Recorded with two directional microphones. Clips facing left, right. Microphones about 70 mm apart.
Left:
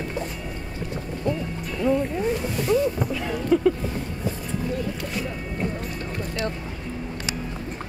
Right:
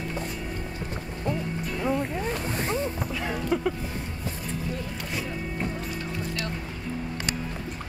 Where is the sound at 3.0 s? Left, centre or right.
Centre.